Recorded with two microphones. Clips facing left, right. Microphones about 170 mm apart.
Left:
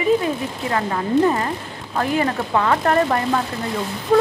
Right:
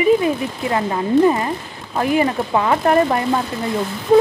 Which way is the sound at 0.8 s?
10° right (ahead or behind).